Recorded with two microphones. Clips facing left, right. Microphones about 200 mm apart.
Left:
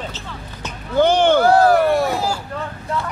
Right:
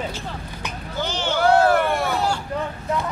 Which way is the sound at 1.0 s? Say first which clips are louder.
Left 11 dB; 55° left (ahead or behind).